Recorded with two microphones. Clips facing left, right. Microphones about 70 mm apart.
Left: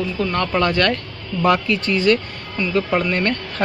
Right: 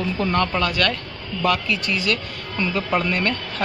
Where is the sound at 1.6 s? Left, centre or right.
Centre.